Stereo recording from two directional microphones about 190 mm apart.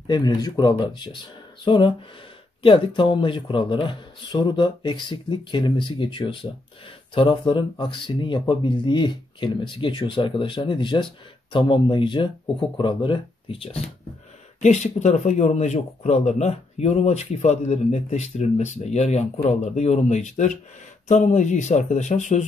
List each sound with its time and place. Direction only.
0.1 s speech: 20° left (ahead or behind); by 22.5 s 40° left (ahead or behind)